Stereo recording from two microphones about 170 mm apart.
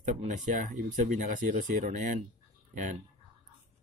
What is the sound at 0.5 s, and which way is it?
Speech, 50° right (ahead or behind).